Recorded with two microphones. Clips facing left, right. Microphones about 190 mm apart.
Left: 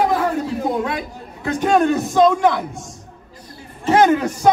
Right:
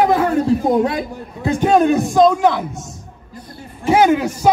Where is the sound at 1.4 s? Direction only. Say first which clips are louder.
Right 3 dB; 20° right (ahead or behind).